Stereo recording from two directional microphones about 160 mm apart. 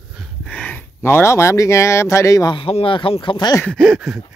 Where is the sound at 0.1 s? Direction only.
Centre (ahead or behind); by 3.6 s 25° left (ahead or behind).